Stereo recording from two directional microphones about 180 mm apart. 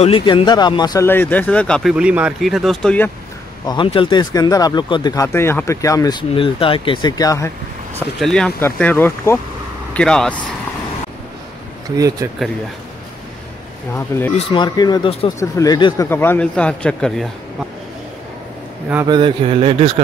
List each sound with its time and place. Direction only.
0.0 s speech: 30° left (ahead or behind); by 3.1 s 5° left (ahead or behind)
3.6 s speech: 25° left (ahead or behind)
8.2 s speech: 5° left (ahead or behind)
13.9 s speech: 15° left (ahead or behind)
14.3 s speech: 25° left (ahead or behind); by 17.3 s 5° left (ahead or behind)
19.0 s speech: 25° right (ahead or behind)